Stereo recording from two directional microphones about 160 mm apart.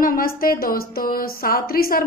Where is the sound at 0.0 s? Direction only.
65° left (ahead or behind).